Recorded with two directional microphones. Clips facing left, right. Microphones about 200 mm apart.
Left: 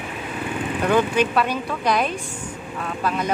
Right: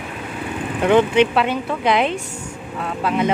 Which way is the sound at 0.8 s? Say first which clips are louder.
Right 5 dB; 25° right (ahead or behind).